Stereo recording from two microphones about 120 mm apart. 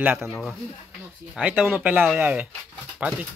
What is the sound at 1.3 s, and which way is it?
Speech, 5° right (ahead or behind).